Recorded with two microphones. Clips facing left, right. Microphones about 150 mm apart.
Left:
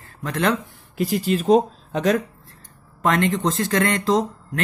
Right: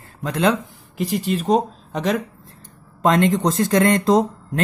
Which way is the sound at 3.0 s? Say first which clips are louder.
Right 3 dB; 20° right (ahead or behind).